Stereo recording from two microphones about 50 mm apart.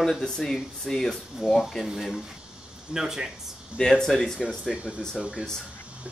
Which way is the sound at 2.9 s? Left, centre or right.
Centre.